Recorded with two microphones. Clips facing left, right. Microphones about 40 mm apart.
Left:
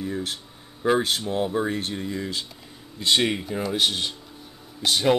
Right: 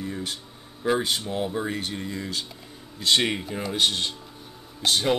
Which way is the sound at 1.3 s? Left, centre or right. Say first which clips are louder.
Left 3 dB; centre.